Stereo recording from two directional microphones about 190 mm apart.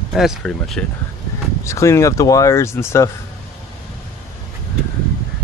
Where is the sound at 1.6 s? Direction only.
15° left (ahead or behind).